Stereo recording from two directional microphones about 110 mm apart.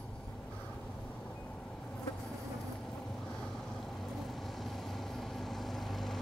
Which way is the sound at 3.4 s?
Centre (ahead or behind).